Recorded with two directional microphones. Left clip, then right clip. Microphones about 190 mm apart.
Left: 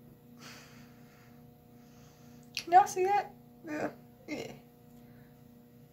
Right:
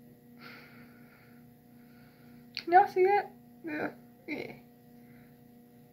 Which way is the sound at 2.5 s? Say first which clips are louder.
Right 1 dB; 35° left (ahead or behind).